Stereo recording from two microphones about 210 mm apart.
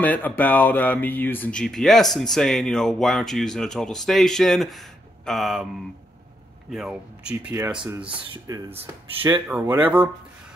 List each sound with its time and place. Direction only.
0.0 s speech: 10° left (ahead or behind)
6.7 s speech: 5° right (ahead or behind)
8.1 s speech: 20° right (ahead or behind)